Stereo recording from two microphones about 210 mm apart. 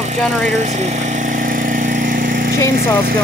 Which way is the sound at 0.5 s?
35° right (ahead or behind).